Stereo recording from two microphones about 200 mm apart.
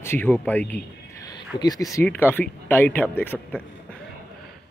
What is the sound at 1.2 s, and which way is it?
Speech, 20° left (ahead or behind).